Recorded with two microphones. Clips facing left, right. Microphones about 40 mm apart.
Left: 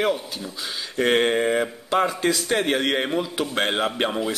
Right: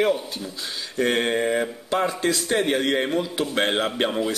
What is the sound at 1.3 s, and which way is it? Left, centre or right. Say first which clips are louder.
Speech: left 1 dB; centre.